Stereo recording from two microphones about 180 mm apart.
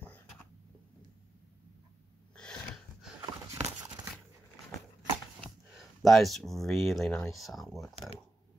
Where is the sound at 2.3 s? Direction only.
5° left (ahead or behind).